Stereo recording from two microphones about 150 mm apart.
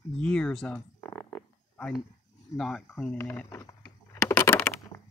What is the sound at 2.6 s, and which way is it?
Speech, 5° left (ahead or behind).